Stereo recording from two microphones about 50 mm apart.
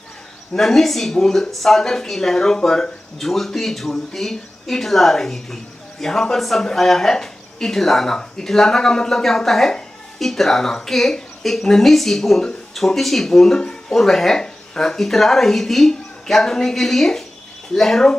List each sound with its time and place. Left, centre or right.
0.6 s a woman's voice: centre